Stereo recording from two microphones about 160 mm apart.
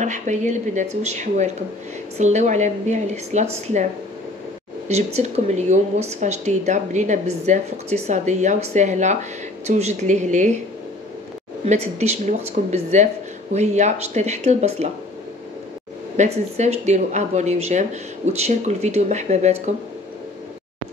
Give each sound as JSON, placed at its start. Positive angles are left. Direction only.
{"t": 0.0, "sound": "a woman's voice", "side_deg": -50}
{"t": 4.8, "sound": "a woman's voice", "side_deg": -45}
{"t": 11.6, "sound": "a woman's voice", "side_deg": -45}
{"t": 16.2, "sound": "a woman's voice", "side_deg": -45}